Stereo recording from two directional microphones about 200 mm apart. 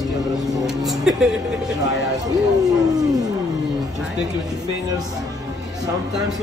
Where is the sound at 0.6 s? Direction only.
Centre (ahead or behind).